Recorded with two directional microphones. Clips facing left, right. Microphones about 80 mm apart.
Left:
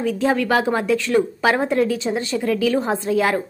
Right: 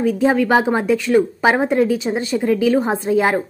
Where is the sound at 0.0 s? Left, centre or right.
Centre.